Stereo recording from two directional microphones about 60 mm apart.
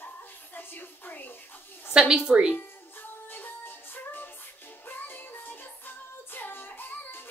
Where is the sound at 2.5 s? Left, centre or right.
Left.